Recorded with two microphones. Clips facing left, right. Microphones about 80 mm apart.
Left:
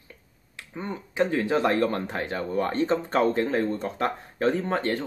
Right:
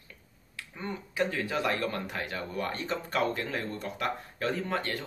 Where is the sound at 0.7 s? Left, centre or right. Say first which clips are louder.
Left 4 dB; left.